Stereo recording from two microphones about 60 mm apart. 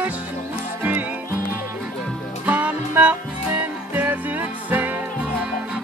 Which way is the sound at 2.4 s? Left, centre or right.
Right.